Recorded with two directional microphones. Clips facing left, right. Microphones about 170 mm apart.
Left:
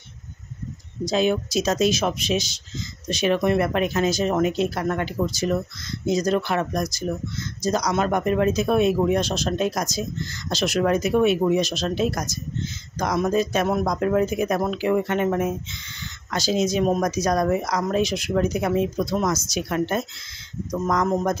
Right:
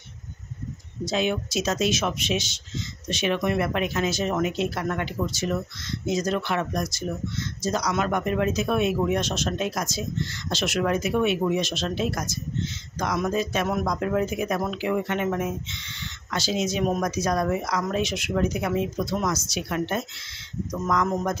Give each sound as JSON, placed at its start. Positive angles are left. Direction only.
{"t": 1.0, "sound": "speech", "side_deg": 35}